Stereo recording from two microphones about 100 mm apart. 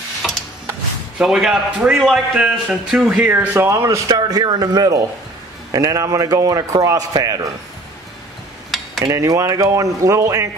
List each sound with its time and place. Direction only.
0.2 s a sound: centre (ahead or behind)
1.1 s a man's voice: 5° right (ahead or behind)
3.2 s speech: 20° right (ahead or behind)
4.1 s a man's voice: 45° right (ahead or behind)
9.1 s a man's voice: 30° right (ahead or behind)